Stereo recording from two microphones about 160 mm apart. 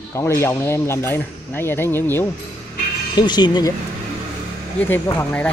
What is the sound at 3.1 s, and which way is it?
Speech, 25° left (ahead or behind).